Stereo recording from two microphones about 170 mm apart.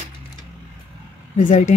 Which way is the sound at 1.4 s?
45° left (ahead or behind).